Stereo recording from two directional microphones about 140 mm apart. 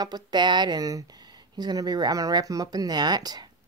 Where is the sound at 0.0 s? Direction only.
30° right (ahead or behind).